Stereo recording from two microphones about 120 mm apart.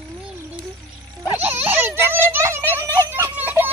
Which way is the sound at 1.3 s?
15° right (ahead or behind).